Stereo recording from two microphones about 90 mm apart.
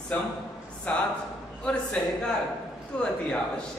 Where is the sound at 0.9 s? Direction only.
15° left (ahead or behind).